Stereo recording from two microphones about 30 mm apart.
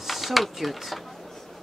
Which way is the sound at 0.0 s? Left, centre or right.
Centre.